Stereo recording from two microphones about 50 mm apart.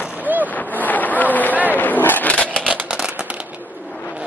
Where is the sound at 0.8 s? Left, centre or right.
Left.